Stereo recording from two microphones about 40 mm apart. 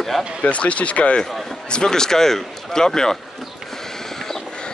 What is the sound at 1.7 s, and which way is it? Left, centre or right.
Speech, centre.